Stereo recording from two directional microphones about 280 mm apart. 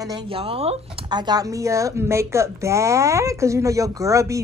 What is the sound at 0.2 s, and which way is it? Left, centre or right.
Speech, centre.